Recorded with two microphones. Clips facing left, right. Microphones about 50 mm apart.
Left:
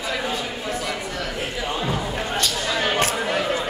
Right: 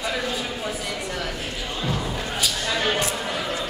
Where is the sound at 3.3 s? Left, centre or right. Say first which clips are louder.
Left 5 dB; left.